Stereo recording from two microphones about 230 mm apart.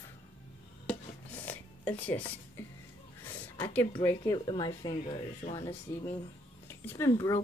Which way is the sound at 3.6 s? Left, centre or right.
Centre.